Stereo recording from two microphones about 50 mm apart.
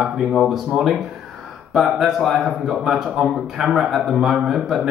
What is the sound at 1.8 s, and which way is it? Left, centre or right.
Speech, centre.